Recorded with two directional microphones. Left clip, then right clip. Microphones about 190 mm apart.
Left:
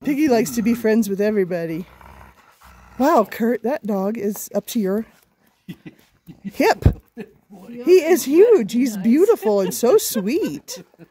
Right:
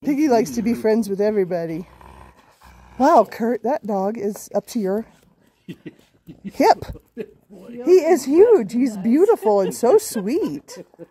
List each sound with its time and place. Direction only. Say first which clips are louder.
0.0 s speech: even; 10° left (ahead or behind)
3.0 s speech: right 2 dB; 15° left (ahead or behind)
6.5 s speech: right 2 dB; 10° left (ahead or behind)